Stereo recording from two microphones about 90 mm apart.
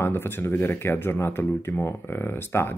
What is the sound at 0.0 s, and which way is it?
Speech, 25° left (ahead or behind).